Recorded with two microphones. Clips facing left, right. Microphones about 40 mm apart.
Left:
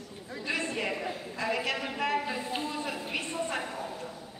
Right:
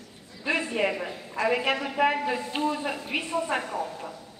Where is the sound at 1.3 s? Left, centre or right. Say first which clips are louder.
Right 7 dB; centre.